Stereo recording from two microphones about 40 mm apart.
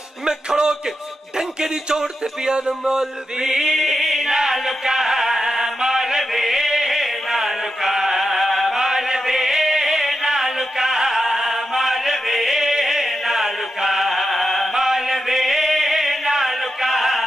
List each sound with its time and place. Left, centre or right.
0.2 s a man's voice: centre
1.6 s a sound: centre
14.7 s chant: centre